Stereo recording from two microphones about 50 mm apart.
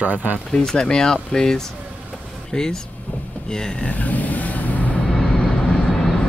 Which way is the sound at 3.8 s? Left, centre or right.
Left.